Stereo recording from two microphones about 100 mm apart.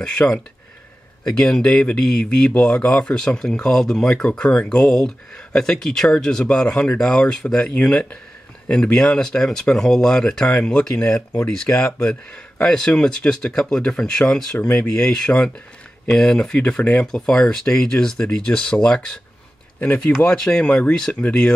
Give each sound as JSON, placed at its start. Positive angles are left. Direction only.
{"t": 0.0, "sound": "speech", "side_deg": 10}
{"t": 1.4, "sound": "speech", "side_deg": 5}